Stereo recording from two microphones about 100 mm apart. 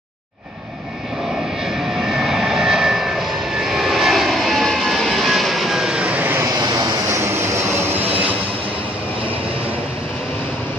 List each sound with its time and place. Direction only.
2.0 s vehicle: 5° right (ahead or behind); by 6.5 s 20° right (ahead or behind)
6.6 s vehicle: 40° right (ahead or behind)
7.2 s vehicle: 25° right (ahead or behind)